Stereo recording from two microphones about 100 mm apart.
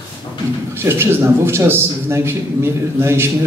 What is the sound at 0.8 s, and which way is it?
A man's voice, 25° right (ahead or behind).